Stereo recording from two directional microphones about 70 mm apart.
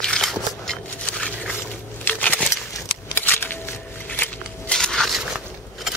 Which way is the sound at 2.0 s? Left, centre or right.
Left.